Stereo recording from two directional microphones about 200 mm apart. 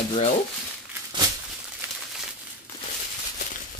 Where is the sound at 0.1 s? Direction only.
35° left (ahead or behind).